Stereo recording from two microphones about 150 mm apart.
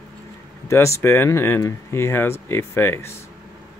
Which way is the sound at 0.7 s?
20° left (ahead or behind).